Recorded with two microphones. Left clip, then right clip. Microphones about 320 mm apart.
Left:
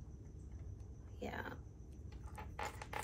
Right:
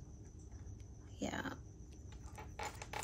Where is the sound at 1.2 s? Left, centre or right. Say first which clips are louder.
Right 3 dB; right.